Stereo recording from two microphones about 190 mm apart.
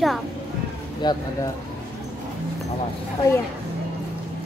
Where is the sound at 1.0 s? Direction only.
25° left (ahead or behind).